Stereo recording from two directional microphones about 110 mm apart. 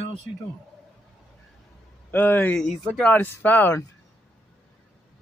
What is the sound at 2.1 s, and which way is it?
Speech, 15° left (ahead or behind).